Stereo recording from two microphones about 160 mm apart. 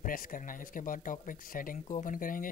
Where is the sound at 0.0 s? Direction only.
60° left (ahead or behind).